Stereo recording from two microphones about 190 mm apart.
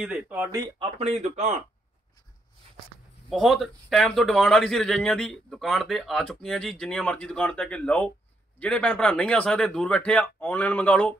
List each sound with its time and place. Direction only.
0.0 s speech: 5° right (ahead or behind)
0.9 s speech: 35° right (ahead or behind)
3.3 s speech: centre (ahead or behind)